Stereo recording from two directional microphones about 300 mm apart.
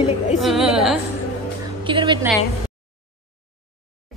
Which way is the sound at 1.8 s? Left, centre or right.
Centre.